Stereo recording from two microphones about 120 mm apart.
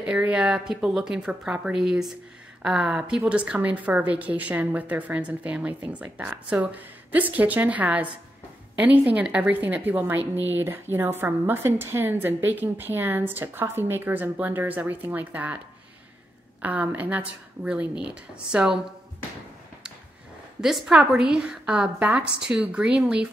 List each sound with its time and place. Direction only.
0.0 s a woman's voice: 10° right (ahead or behind)
16.6 s a woman's voice: 15° right (ahead or behind)
20.6 s a woman's voice: 5° right (ahead or behind)